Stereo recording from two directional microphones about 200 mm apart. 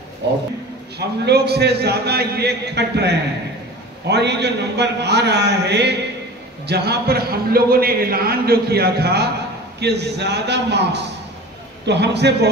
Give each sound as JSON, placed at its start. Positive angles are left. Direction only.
{"t": 0.9, "sound": "a man's voice", "side_deg": -55}